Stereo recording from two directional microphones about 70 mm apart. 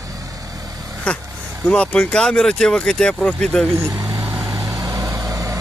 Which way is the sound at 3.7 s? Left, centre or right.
Right.